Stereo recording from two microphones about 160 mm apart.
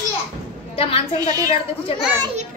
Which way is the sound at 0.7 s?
35° left (ahead or behind).